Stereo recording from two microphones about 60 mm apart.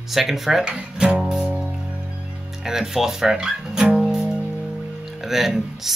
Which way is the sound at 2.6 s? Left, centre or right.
Centre.